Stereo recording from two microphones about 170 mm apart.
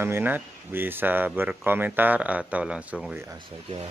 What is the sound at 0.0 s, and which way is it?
Speech, 10° right (ahead or behind).